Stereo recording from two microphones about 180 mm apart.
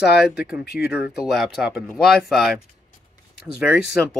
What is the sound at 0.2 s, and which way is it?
Speech, 5° right (ahead or behind).